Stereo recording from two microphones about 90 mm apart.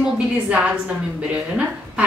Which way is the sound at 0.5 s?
10° right (ahead or behind).